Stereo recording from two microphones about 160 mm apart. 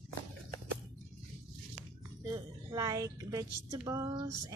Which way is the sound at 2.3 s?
20° right (ahead or behind).